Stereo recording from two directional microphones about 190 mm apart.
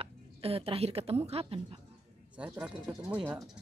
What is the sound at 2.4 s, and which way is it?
Speech, 5° right (ahead or behind).